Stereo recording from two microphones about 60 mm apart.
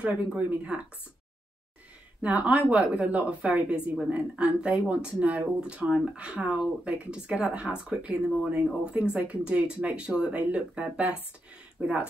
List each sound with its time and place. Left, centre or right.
0.0 s speech: right
2.2 s speech: right